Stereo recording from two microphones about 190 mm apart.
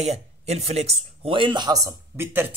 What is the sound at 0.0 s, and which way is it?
A man's voice, 35° right (ahead or behind).